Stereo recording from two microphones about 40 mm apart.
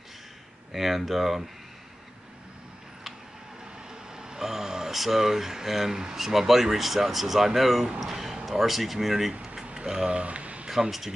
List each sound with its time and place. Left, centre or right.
0.7 s speech: centre
4.1 s vehicle: centre
4.9 s a man's voice: centre
10.1 s a sound: right
10.7 s speech: centre